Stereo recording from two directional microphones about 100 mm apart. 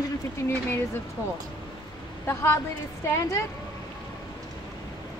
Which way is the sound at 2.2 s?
25° left (ahead or behind).